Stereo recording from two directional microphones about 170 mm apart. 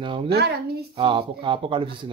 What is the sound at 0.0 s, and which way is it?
Speech, 30° right (ahead or behind).